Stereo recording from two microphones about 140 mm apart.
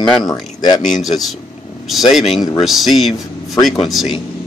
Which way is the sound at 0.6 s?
30° left (ahead or behind).